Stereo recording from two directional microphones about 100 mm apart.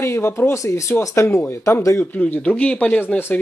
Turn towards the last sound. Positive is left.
turn(degrees=20)  # may be behind; listen again after turning